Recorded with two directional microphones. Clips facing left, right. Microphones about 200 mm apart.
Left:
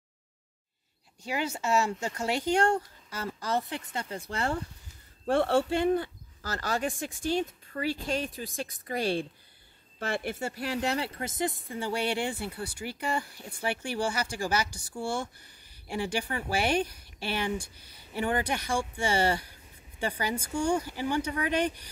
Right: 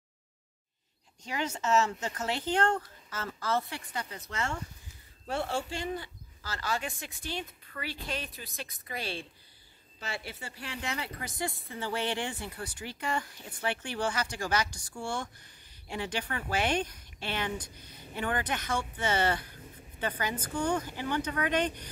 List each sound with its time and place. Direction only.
1.2 s a woman's voice: 10° left (ahead or behind); by 4.6 s 35° left (ahead or behind)
5.2 s a woman's voice: 55° left (ahead or behind); by 21.8 s 10° left (ahead or behind)